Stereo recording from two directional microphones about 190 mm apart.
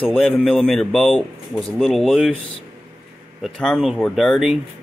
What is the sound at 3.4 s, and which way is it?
Speech, 5° left (ahead or behind).